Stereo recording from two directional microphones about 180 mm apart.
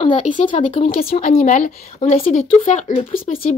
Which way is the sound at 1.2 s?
45° left (ahead or behind).